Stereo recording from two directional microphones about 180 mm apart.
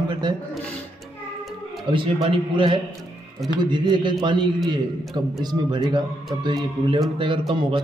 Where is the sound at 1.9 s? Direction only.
30° right (ahead or behind).